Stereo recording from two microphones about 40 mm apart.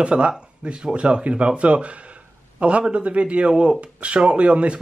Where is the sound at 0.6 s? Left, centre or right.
Right.